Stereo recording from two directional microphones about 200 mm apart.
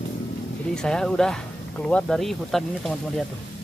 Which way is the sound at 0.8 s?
5° left (ahead or behind).